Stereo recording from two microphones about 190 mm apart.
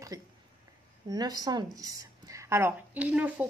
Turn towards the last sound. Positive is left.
turn(degrees=-5)  # may be behind; listen again after turning